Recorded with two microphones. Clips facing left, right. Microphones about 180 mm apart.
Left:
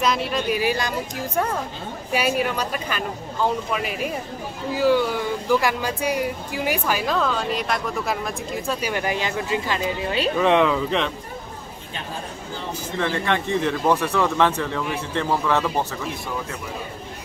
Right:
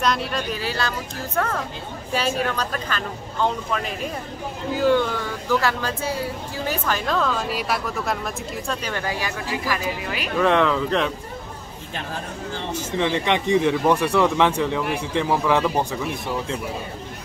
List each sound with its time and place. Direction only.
0.0 s speech: centre (ahead or behind)
0.6 s speech: 15° left (ahead or behind); by 8.2 s centre (ahead or behind)
8.6 s speech: 10° left (ahead or behind); by 10.3 s 30° left (ahead or behind)
10.3 s speech: 5° left (ahead or behind)
13.0 s speech: 20° right (ahead or behind)